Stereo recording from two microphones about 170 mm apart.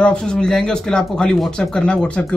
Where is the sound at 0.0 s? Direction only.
5° left (ahead or behind).